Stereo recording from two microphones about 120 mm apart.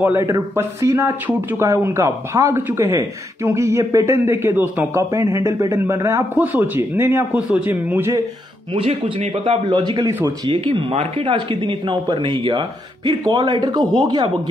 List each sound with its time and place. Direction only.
0.0 s speech: 20° right (ahead or behind)
8.7 s speech: 50° right (ahead or behind)
10.5 s a man's voice: 45° right (ahead or behind)